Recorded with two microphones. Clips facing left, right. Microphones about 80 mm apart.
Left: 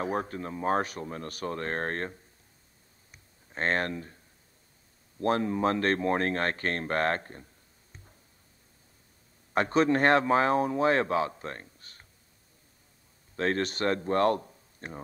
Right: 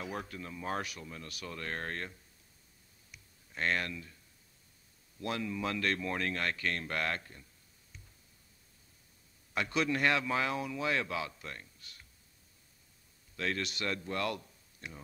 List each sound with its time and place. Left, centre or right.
0.0 s speech: left
3.1 s a sound: left
5.2 s speech: left
9.5 s a man's voice: left
13.4 s a man's voice: left